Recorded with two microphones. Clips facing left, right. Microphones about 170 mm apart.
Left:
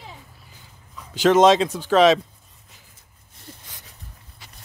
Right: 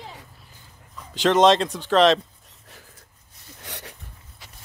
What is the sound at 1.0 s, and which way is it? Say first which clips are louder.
Speech: left 2 dB; centre (ahead or behind).